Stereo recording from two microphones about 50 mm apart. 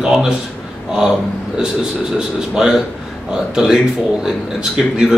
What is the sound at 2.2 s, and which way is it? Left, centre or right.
Speech, centre.